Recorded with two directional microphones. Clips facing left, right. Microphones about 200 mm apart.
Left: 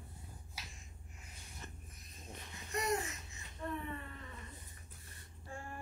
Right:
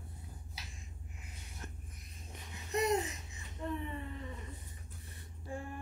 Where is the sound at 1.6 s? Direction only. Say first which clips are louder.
Right 3 dB; 10° right (ahead or behind).